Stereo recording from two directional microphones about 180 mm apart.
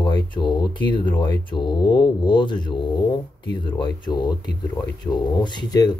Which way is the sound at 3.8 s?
25° left (ahead or behind).